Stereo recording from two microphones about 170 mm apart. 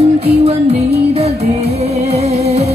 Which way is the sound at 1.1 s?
40° right (ahead or behind).